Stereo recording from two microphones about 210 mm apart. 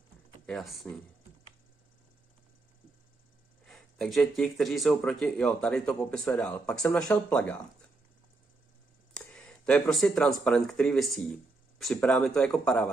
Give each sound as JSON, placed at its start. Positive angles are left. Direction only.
{"t": 0.5, "sound": "speech", "side_deg": 0}
{"t": 3.6, "sound": "speech", "side_deg": 0}
{"t": 9.1, "sound": "speech", "side_deg": 5}